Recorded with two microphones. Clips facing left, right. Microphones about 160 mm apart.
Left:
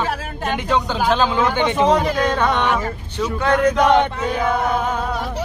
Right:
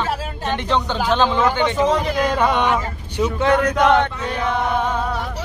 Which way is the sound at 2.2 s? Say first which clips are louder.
Even; 10° right (ahead or behind).